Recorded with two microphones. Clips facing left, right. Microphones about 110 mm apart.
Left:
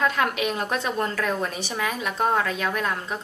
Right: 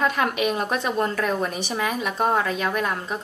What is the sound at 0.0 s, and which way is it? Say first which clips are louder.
A woman's voice: right 1 dB; 10° right (ahead or behind).